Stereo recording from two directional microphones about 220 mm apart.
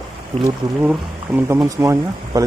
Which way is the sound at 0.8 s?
5° right (ahead or behind).